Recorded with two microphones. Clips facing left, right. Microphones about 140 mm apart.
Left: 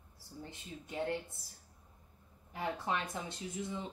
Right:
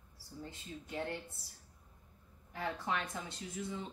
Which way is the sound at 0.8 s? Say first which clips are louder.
Left 2 dB; 20° left (ahead or behind).